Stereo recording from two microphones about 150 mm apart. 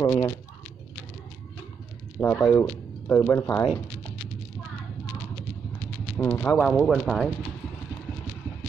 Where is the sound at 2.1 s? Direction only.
10° left (ahead or behind).